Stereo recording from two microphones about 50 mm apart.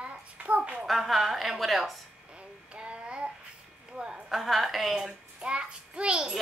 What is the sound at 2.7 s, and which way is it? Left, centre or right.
Child singing, right.